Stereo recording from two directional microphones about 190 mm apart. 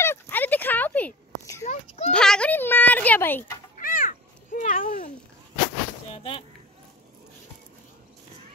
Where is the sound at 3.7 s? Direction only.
45° left (ahead or behind).